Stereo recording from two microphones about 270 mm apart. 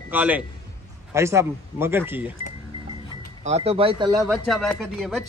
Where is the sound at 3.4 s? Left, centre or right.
Right.